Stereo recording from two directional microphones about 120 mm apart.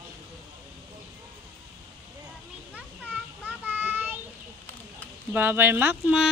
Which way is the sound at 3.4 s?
15° right (ahead or behind).